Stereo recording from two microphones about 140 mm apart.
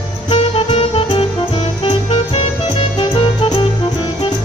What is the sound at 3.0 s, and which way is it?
Music, 30° left (ahead or behind).